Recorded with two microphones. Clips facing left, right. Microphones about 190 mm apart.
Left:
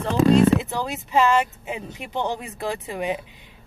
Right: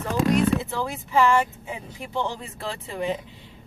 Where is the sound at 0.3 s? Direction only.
20° left (ahead or behind).